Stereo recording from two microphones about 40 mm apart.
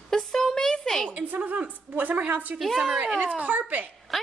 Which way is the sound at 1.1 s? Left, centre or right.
Right.